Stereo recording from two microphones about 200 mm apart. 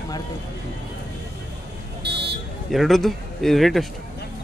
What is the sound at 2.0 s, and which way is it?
Car alarm, 55° right (ahead or behind).